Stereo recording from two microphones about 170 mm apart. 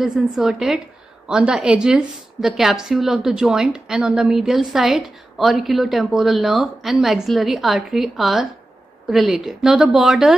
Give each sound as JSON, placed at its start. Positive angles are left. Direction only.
{"t": 0.4, "sound": "a woman's voice", "side_deg": 0}